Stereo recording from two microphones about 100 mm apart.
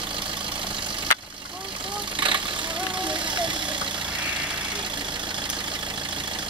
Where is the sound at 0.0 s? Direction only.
55° right (ahead or behind).